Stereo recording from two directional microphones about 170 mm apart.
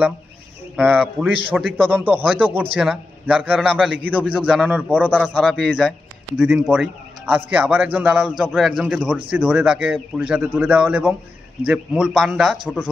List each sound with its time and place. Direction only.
0.7 s a man's voice: 10° right (ahead or behind)
1.5 s speech: 5° left (ahead or behind)
1.8 s a man's voice: 10° right (ahead or behind)